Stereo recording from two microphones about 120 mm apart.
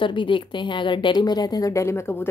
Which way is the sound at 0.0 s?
40° left (ahead or behind).